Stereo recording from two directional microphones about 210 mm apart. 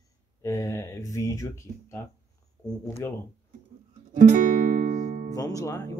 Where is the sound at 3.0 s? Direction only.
10° left (ahead or behind).